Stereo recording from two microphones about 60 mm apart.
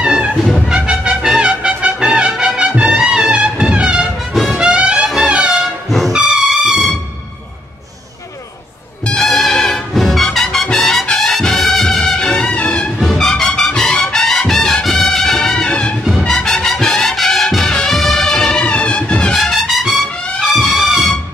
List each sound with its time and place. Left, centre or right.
0.0 s music: centre
2.0 s brass instrument: centre
4.5 s music: centre
5.0 s music: centre
9.0 s music: centre
19.3 s music: centre